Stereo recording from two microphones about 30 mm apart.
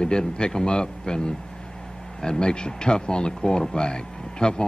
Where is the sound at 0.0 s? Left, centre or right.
Left.